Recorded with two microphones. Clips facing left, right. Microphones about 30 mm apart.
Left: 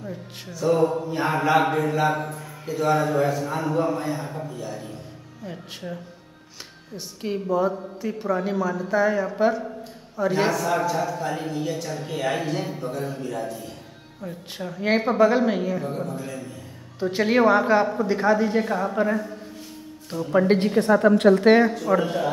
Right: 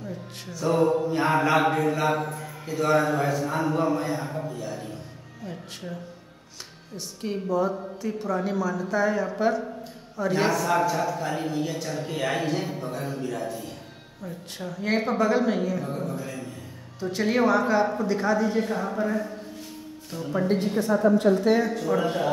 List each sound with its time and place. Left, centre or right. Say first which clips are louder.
0.5 s a man's voice: left 1 dB; centre
5.4 s speech: left 2 dB; centre
7.2 s a woman's voice: left 2 dB; centre
14.2 s a woman's voice: left 3 dB; centre
17.0 s speech: left 4 dB; left
20.3 s a woman's voice: left 5 dB; left
21.7 s speech: left 3 dB; left
22.0 s a man's voice: left 1 dB; centre